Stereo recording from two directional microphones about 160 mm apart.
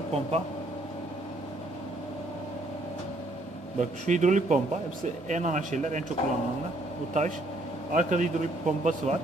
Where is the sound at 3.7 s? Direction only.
50° right (ahead or behind).